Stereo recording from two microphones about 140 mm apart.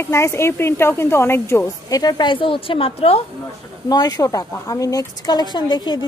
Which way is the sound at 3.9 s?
25° left (ahead or behind).